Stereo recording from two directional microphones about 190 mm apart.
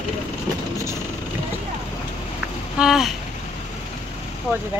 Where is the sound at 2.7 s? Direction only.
Centre (ahead or behind).